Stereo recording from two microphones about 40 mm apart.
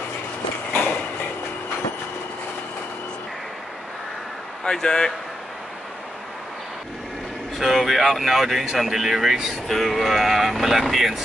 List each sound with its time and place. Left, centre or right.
4.6 s speech: centre
7.5 s speech: centre